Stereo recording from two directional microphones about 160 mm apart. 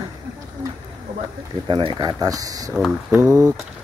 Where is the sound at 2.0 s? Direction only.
25° right (ahead or behind).